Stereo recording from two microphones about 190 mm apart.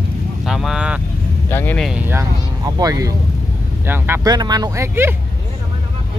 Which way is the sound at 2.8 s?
20° right (ahead or behind).